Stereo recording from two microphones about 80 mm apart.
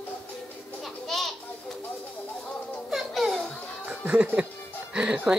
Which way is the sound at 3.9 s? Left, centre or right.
Centre.